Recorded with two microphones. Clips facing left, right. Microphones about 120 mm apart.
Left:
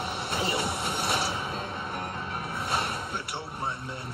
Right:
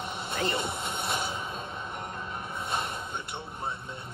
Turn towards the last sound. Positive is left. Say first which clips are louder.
# left 2 dB
turn(degrees=65)  # may be behind; listen again after turning